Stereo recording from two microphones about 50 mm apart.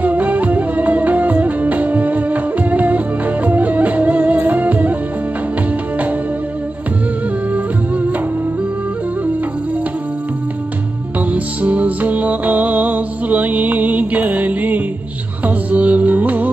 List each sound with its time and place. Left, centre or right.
0.0 s music: right
11.1 s music: right